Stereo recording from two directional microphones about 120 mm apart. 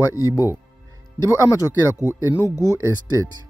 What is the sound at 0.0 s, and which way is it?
Speech, 25° left (ahead or behind).